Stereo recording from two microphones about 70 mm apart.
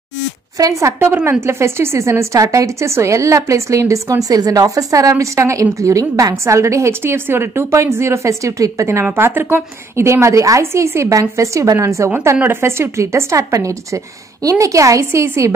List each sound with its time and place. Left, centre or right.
0.6 s a woman's voice: right
1.0 s a woman's voice: right
9.1 s a woman's voice: right
12.4 s a woman's voice: right